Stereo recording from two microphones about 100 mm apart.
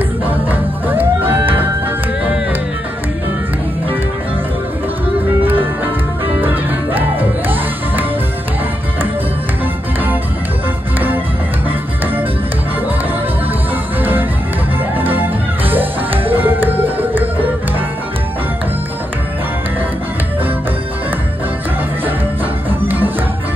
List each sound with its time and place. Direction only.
0.2 s music: 20° right (ahead or behind)
5.4 s music: 20° right (ahead or behind)
15.0 s music: 20° right (ahead or behind)
22.7 s music: 20° right (ahead or behind)